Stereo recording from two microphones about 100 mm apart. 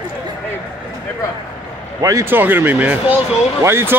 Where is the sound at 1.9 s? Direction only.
35° right (ahead or behind).